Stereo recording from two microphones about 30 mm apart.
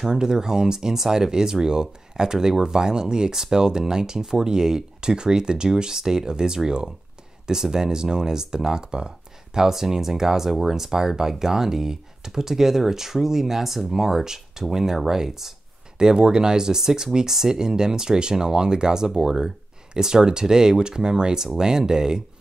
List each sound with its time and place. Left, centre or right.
0.1 s speech: right
9.7 s speech: centre
16.0 s speech: right